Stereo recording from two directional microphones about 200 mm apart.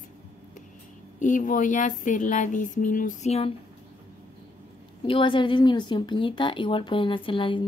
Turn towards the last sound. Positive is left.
turn(degrees=25)  # may be behind; listen again after turning